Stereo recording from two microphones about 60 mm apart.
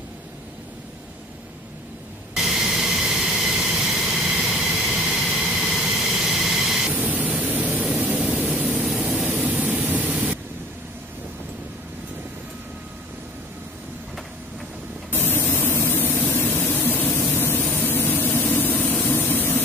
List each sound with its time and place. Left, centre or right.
2.3 s vehicle: centre
6.9 s a sound: right
8.3 s vehicle: right
8.8 s vehicle: centre
9.3 s vehicle: right
10.1 s white noise: right
15.0 s spray: left
17.3 s vehicle: left